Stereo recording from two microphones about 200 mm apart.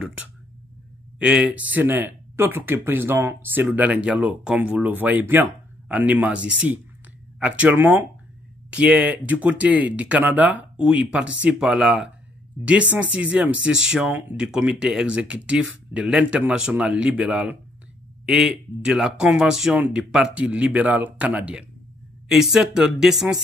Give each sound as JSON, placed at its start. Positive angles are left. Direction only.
{"t": 0.0, "sound": "speech", "side_deg": -5}